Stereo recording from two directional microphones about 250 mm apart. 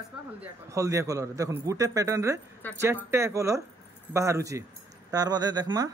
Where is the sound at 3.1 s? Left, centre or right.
Centre.